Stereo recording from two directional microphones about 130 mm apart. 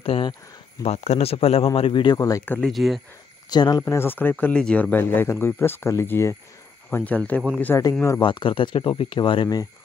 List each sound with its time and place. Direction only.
0.0 s a man's voice: 45° left (ahead or behind)
0.8 s a man's voice: 55° left (ahead or behind)
2.1 s speech: 25° left (ahead or behind)
2.6 s speech: centre (ahead or behind)
3.4 s speech: 30° left (ahead or behind)
3.8 s speech: 20° left (ahead or behind)
8.2 s speech: 40° left (ahead or behind)